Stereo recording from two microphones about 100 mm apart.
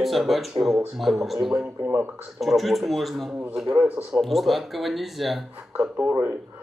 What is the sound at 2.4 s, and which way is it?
Speech, centre (ahead or behind).